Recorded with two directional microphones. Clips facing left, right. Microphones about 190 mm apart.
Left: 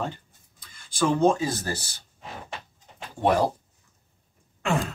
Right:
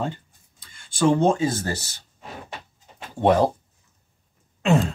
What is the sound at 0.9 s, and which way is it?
Speech, 30° right (ahead or behind).